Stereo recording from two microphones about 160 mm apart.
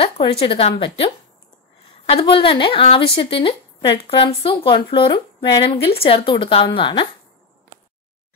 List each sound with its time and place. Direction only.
0.0 s speech: 35° left (ahead or behind)
2.0 s speech: 35° left (ahead or behind)